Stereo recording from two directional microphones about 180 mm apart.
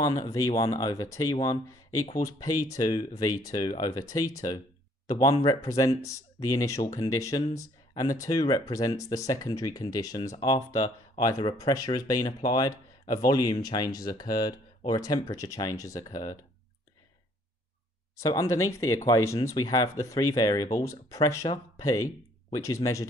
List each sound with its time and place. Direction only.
0.0 s speech: 20° left (ahead or behind)
18.2 s speech: 15° left (ahead or behind)